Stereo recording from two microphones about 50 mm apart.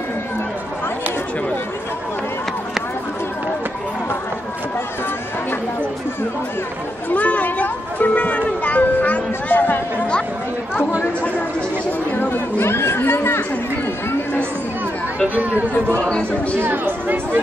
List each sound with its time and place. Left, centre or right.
7.1 s music: left
12.2 s speech: left
15.2 s speech: right
16.0 s speech: left
16.5 s speech: right